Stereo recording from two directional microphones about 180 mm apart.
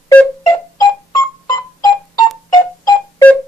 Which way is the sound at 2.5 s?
20° left (ahead or behind).